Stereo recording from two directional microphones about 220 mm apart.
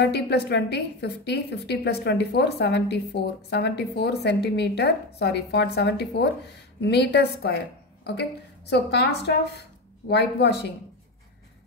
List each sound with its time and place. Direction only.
0.0 s a woman's voice: 50° left (ahead or behind)